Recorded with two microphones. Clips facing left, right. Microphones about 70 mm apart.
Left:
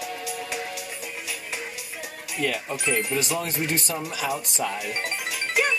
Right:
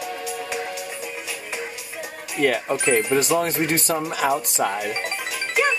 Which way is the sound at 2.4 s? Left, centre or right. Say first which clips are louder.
Right 7 dB; right.